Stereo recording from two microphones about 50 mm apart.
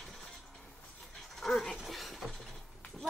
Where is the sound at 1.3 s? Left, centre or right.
Centre.